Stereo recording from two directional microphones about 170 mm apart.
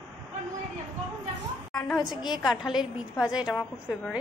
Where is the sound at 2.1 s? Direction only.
25° left (ahead or behind).